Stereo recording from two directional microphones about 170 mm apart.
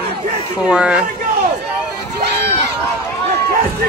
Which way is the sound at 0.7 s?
5° right (ahead or behind).